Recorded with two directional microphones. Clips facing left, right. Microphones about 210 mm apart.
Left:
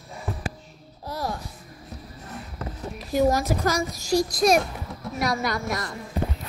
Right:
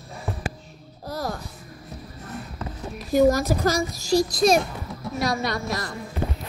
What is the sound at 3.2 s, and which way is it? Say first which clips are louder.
Speech: right 3 dB; 40° right (ahead or behind).